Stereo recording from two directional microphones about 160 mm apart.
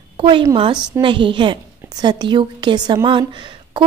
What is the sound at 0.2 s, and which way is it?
A woman's voice, 30° right (ahead or behind).